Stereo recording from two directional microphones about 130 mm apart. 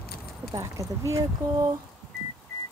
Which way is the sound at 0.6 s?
25° right (ahead or behind).